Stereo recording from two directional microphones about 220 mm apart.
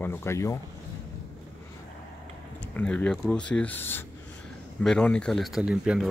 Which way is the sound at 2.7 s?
5° left (ahead or behind).